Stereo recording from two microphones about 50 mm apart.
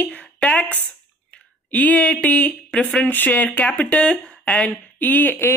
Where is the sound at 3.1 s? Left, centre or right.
Left.